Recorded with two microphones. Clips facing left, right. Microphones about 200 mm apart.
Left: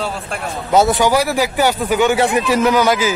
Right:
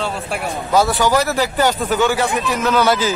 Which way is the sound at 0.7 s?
20° left (ahead or behind).